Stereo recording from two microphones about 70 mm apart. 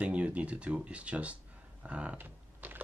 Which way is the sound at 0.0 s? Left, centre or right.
Centre.